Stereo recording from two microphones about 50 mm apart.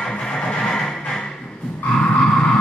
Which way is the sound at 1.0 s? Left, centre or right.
Centre.